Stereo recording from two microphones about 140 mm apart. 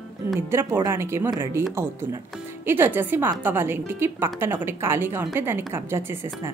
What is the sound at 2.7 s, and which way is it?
A woman's voice, 15° right (ahead or behind).